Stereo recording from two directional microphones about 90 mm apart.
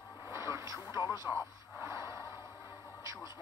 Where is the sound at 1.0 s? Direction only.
45° left (ahead or behind).